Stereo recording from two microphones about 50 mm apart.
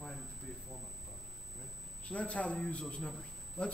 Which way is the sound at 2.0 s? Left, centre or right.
Left.